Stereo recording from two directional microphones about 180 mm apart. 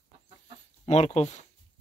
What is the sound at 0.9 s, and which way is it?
Speech, 35° left (ahead or behind).